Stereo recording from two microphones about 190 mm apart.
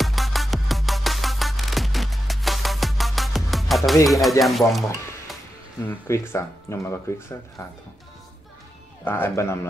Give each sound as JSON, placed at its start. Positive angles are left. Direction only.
{"t": 0.0, "sound": "music", "side_deg": 0}
{"t": 5.9, "sound": "speech", "side_deg": 15}
{"t": 9.0, "sound": "speech", "side_deg": 10}